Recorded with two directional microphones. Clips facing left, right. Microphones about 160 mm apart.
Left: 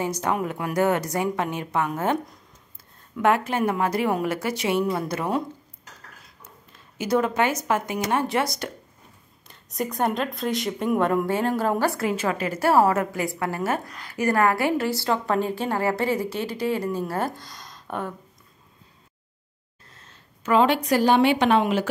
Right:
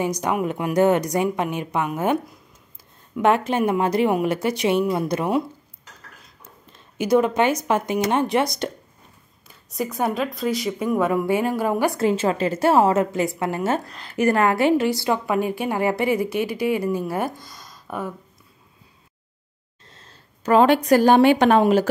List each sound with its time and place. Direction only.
0.0 s a woman's voice: 15° right (ahead or behind)
3.2 s a woman's voice: 20° right (ahead or behind)
7.0 s a woman's voice: 15° right (ahead or behind)
9.5 s a woman's voice: 5° right (ahead or behind)
19.9 s a woman's voice: 30° right (ahead or behind)